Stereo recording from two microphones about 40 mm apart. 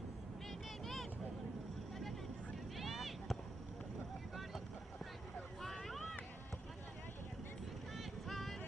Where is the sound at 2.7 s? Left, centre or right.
Centre.